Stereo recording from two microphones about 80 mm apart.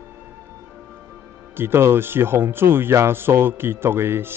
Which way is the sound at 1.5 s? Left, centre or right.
Right.